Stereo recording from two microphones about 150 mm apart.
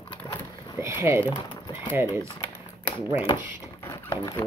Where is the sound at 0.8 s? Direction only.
15° right (ahead or behind).